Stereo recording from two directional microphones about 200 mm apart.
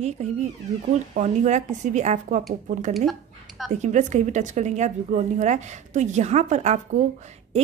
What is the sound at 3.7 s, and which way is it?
Speech, 35° right (ahead or behind).